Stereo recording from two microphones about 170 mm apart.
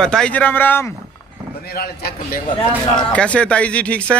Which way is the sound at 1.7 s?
65° left (ahead or behind).